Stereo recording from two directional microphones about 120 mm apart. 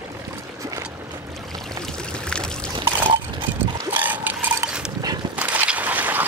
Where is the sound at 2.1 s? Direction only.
10° left (ahead or behind).